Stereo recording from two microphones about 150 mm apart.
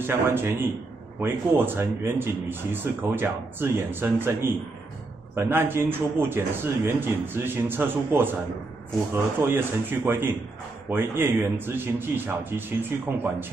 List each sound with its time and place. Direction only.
0.0 s speech: 15° right (ahead or behind)